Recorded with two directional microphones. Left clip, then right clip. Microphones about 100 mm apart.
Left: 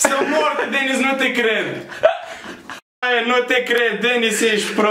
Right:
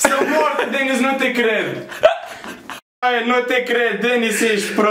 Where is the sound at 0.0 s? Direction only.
5° right (ahead or behind).